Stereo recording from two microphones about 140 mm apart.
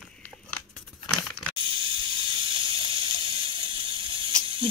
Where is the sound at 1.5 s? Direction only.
35° right (ahead or behind).